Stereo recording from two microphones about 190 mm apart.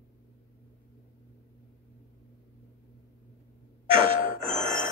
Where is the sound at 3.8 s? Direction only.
30° right (ahead or behind).